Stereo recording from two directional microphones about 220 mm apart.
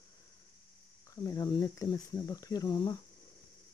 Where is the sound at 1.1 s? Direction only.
15° left (ahead or behind).